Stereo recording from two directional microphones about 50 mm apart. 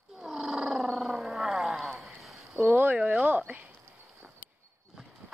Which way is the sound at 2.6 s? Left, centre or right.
Right.